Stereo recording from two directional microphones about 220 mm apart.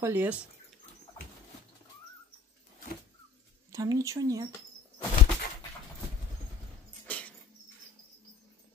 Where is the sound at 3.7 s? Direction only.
15° right (ahead or behind).